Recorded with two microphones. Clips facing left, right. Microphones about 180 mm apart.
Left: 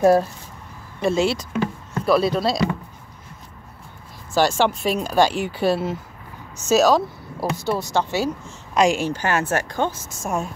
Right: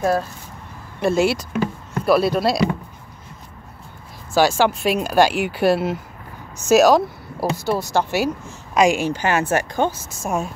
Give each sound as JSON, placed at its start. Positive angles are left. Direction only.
{"t": 1.0, "sound": "speech", "side_deg": -5}
{"t": 4.3, "sound": "a woman's voice", "side_deg": -5}